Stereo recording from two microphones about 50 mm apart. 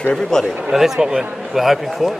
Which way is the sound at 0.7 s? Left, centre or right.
Centre.